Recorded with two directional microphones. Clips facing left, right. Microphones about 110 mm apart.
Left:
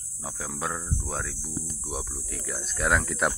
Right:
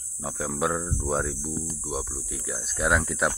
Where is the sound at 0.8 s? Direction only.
25° right (ahead or behind).